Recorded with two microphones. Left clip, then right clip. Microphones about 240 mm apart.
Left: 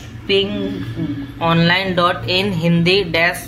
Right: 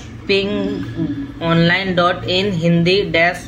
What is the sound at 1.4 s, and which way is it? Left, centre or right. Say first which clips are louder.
Speech: left 1 dB; centre.